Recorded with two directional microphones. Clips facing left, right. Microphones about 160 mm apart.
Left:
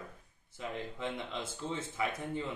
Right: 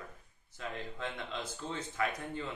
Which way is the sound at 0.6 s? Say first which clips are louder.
Left 2 dB; 20° left (ahead or behind).